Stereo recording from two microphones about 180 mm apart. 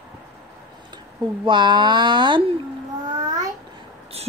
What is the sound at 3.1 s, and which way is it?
Child singing, 20° right (ahead or behind).